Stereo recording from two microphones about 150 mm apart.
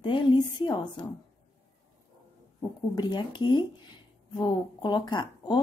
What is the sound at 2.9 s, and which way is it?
A woman's voice, 30° left (ahead or behind).